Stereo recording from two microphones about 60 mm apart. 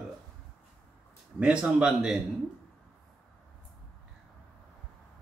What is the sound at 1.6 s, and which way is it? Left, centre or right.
Speech, centre.